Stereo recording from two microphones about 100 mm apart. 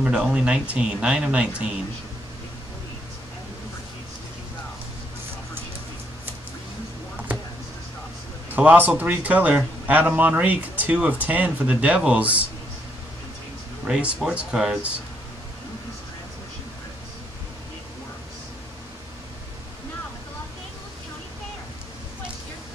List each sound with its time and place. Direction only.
0.0 s a man's voice: 10° right (ahead or behind)
8.5 s a man's voice: 15° right (ahead or behind)
13.8 s a man's voice: 5° right (ahead or behind)